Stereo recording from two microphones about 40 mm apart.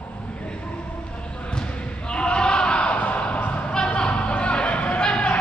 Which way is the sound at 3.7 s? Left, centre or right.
Left.